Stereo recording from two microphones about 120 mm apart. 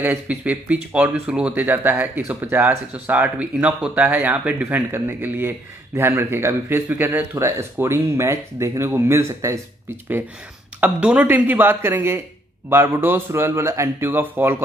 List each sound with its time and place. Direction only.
0.0 s speech: 15° right (ahead or behind)
10.8 s speech: 10° right (ahead or behind)